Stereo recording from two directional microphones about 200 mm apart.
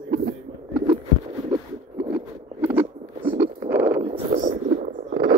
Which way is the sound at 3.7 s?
10° right (ahead or behind).